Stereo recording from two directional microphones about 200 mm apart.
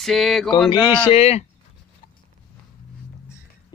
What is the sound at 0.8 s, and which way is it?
Speech, 25° left (ahead or behind).